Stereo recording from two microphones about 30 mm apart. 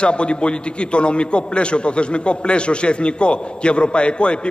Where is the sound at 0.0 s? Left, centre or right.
Left.